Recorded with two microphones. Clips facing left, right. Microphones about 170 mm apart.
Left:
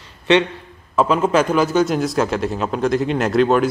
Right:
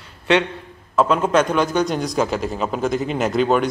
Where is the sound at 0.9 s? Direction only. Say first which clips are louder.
Left 1 dB; 5° left (ahead or behind).